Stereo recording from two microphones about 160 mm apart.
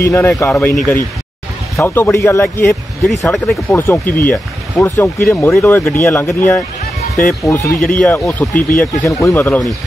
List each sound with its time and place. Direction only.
0.0 s speech: 15° left (ahead or behind)
1.8 s speech: 15° left (ahead or behind)
2.7 s speech: centre (ahead or behind)
3.6 s speech: 15° left (ahead or behind)
7.8 s speech: 10° left (ahead or behind)